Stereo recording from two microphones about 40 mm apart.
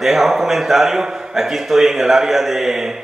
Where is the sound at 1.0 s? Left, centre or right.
Centre.